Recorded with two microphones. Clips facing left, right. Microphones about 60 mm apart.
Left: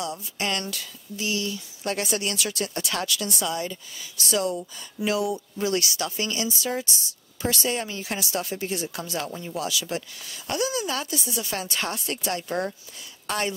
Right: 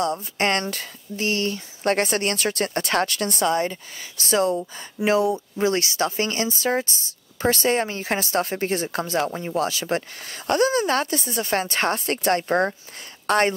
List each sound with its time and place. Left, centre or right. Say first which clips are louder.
0.0 s speech: right 7 dB; right